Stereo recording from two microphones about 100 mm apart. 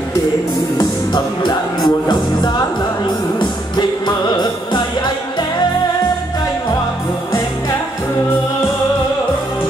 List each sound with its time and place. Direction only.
0.7 s music: 45° left (ahead or behind)